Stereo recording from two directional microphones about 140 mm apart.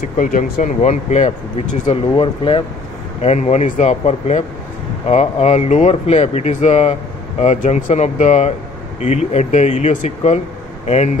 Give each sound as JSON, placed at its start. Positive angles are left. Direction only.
{"t": 0.2, "sound": "speech", "side_deg": 70}
{"t": 2.1, "sound": "speech", "side_deg": 40}
{"t": 3.2, "sound": "speech", "side_deg": 50}